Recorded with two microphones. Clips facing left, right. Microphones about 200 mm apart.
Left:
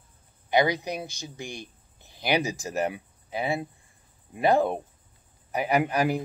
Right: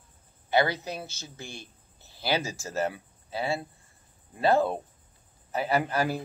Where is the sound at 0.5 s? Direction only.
15° left (ahead or behind).